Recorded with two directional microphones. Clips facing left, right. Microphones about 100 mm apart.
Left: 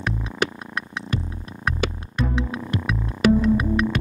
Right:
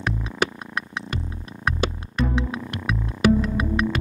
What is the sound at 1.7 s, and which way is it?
Music, centre (ahead or behind).